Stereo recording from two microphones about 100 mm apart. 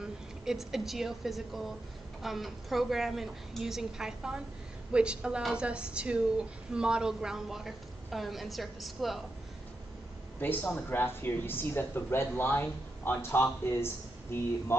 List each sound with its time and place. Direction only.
0.0 s a woman's voice: 5° right (ahead or behind)
10.4 s speech: 15° left (ahead or behind)